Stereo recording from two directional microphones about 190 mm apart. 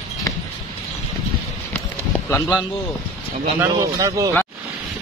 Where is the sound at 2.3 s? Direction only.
15° left (ahead or behind).